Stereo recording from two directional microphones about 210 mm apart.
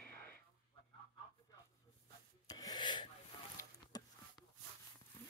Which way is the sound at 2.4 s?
20° left (ahead or behind).